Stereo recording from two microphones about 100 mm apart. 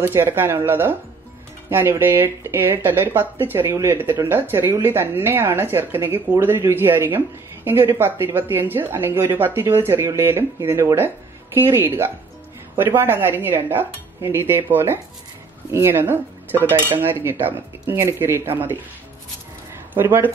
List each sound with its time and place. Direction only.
0.0 s a woman's voice: 25° right (ahead or behind)
19.9 s speech: 20° right (ahead or behind)